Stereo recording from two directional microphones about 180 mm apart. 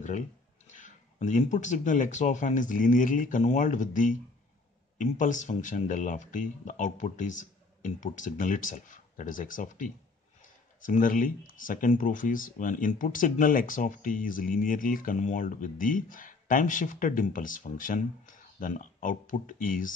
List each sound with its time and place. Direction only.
0.7 s speech: 45° left (ahead or behind)